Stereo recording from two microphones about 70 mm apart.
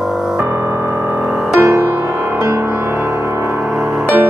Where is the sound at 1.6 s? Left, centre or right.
Right.